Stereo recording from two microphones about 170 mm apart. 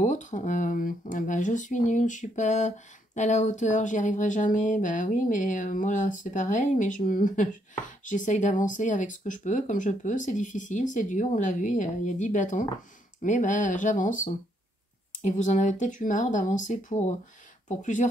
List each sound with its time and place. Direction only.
0.0 s speech: 45° left (ahead or behind)